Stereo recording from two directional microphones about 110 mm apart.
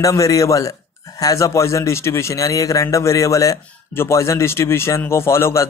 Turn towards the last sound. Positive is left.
turn(degrees=25)  # may be behind; listen again after turning